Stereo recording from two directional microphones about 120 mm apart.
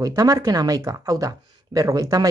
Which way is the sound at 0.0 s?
30° right (ahead or behind).